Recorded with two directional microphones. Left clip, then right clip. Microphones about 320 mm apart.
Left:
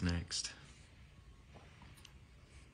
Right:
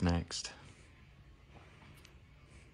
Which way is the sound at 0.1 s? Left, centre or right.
Centre.